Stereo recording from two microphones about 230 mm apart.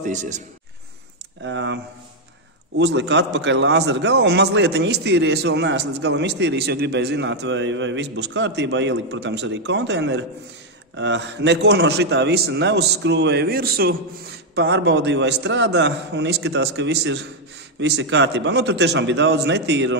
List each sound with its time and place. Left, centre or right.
0.0 s a man's voice: right
1.4 s a man's voice: right
2.8 s a man's voice: right